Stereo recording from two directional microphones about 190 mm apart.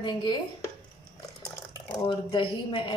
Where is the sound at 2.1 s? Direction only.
30° left (ahead or behind).